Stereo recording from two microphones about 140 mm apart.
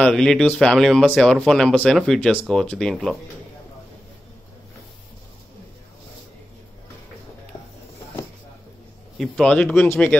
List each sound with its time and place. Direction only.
0.0 s speech: 5° left (ahead or behind)
9.2 s speech: 5° left (ahead or behind)